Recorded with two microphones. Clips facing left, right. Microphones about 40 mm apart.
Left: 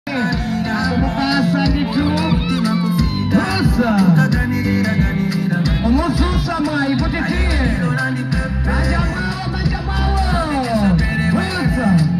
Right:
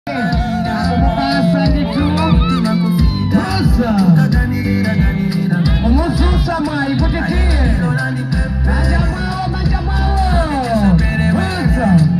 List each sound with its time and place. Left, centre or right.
2.1 s honk: right
3.8 s music: centre
10.9 s music: right